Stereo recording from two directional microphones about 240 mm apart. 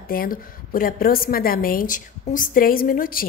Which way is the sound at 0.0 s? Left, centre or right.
Left.